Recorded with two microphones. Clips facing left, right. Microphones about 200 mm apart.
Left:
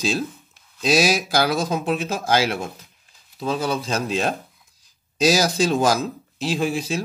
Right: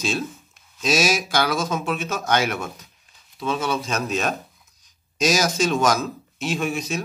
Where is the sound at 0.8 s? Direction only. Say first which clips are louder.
Left 2 dB; 35° left (ahead or behind).